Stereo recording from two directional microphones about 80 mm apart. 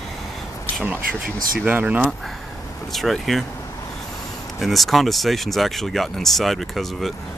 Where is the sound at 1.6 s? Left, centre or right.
Centre.